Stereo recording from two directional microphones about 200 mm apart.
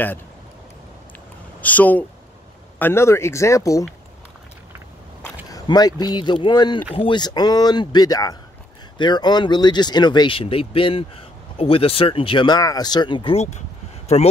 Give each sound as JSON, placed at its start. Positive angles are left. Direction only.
{"t": 1.6, "sound": "speech", "side_deg": 10}
{"t": 5.2, "sound": "speech", "side_deg": 20}